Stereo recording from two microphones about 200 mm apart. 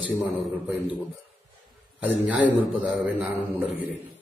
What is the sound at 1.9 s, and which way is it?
Speech, 10° right (ahead or behind).